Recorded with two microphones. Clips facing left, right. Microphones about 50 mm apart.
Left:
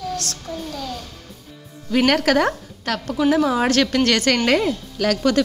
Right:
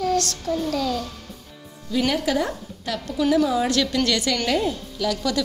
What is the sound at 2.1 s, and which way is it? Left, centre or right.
A woman's voice, left.